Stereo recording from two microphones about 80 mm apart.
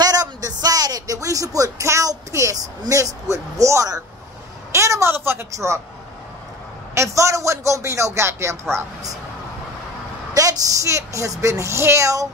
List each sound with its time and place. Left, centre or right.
0.0 s speech: right
4.7 s a sound: right
5.5 s speech: right
7.0 s speech: right
10.3 s speech: right